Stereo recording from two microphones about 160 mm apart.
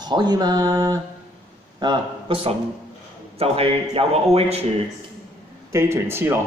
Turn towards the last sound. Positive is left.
turn(degrees=-15)  # may be behind; listen again after turning